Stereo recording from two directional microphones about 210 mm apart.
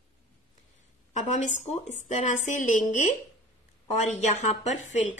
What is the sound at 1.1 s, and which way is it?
Speech, 35° left (ahead or behind).